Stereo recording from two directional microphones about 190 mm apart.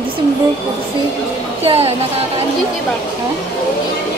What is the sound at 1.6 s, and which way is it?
Speech, 35° right (ahead or behind).